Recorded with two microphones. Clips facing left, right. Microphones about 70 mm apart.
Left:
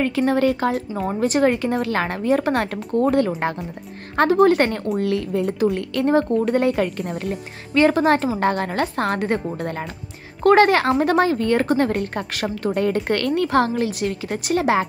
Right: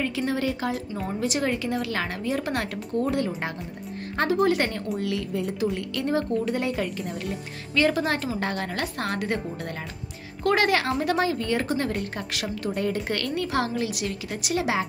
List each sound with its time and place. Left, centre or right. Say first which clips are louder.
0.0 s a woman's voice: left 8 dB; left
4.2 s a woman's voice: left 7 dB; left
7.7 s a woman's voice: left 7 dB; left